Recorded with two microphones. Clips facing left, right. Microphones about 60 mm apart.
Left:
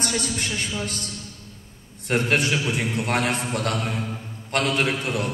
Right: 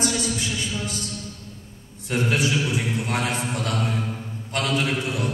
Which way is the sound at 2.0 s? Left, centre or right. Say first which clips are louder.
Left 1 dB; left.